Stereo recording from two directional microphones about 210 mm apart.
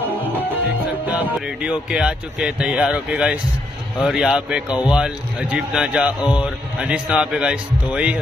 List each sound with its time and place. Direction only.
1.1 s speech: 5° right (ahead or behind)